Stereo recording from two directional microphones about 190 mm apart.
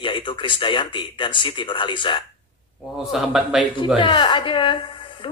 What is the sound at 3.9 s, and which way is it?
Speech, 25° left (ahead or behind).